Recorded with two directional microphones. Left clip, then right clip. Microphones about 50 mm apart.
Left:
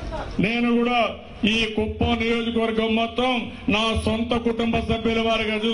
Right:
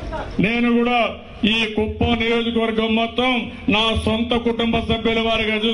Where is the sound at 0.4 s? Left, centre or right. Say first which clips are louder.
Right 3 dB; left.